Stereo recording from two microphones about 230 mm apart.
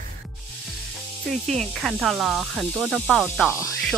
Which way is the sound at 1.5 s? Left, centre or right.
Centre.